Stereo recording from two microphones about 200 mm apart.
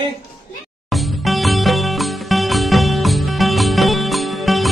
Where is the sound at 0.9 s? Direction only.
Centre (ahead or behind).